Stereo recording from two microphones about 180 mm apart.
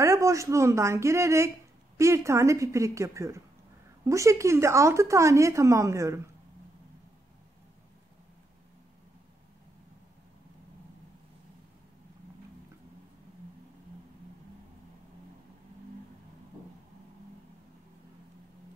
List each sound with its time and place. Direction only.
0.0 s a woman's voice: 15° right (ahead or behind)